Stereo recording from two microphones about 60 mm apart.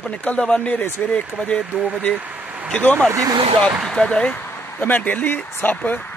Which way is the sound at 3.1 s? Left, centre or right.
Right.